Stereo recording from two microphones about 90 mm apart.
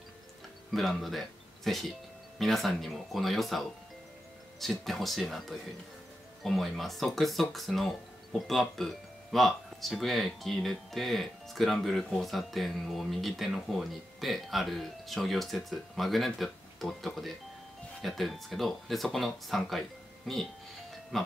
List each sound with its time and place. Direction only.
0.7 s speech: centre (ahead or behind)